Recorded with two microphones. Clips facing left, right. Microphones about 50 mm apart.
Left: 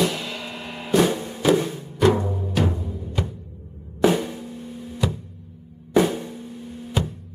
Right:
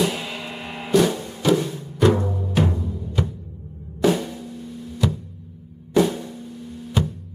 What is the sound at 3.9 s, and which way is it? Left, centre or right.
Drum, centre.